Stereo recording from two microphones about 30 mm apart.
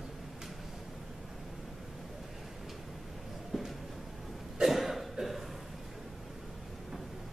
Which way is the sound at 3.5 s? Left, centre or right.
Centre.